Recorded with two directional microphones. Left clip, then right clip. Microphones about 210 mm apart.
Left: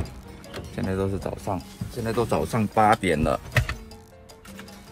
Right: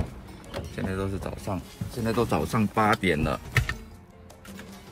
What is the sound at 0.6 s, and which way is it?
Speech, centre (ahead or behind).